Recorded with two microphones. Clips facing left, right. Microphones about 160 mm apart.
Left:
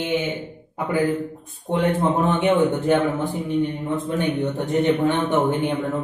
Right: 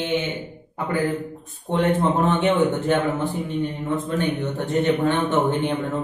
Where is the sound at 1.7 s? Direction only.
10° left (ahead or behind).